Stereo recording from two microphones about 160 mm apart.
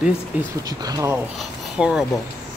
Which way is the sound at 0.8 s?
20° right (ahead or behind).